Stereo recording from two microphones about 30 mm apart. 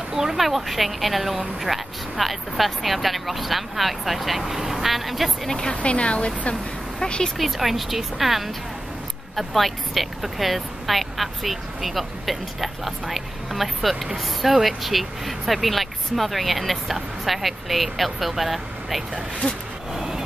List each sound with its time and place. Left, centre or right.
0.1 s a sound: centre
0.4 s speech: centre
5.5 s speech: left
5.8 s speech: left
7.0 s speech: left
7.3 s speech: centre
19.9 s vehicle: centre